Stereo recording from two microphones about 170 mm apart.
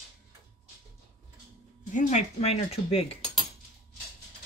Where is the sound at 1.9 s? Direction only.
40° left (ahead or behind).